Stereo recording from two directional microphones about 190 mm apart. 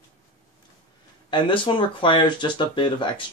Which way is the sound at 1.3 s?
25° left (ahead or behind).